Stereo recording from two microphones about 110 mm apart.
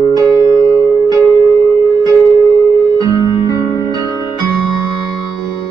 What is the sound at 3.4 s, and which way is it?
Music, 35° left (ahead or behind).